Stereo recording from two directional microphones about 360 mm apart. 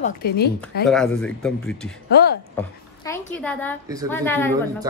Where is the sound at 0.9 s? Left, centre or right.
Centre.